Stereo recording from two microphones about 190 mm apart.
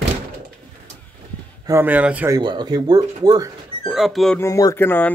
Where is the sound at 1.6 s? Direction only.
10° right (ahead or behind).